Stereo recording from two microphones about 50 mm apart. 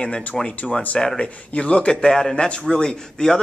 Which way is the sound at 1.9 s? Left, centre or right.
Centre.